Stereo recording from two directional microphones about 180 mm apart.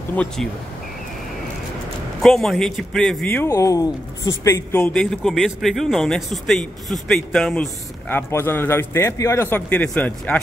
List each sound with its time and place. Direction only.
0.1 s speech: 5° left (ahead or behind)
2.2 s speech: centre (ahead or behind)
3.3 s speech: 15° left (ahead or behind)
4.7 s speech: 5° left (ahead or behind)